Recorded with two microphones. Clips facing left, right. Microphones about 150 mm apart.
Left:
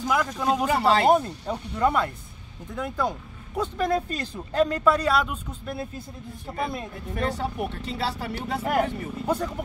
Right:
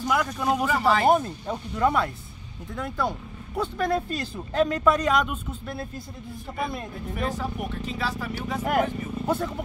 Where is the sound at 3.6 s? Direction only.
Centre (ahead or behind).